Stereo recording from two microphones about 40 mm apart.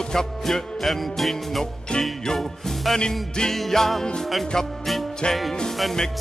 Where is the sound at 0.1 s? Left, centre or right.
Centre.